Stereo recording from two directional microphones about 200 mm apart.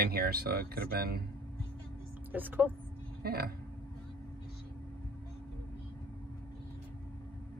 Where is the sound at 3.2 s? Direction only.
50° right (ahead or behind).